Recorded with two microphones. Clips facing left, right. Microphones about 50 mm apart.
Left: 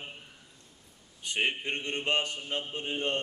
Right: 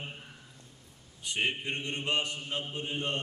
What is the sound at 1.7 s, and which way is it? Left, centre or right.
Mantra, left.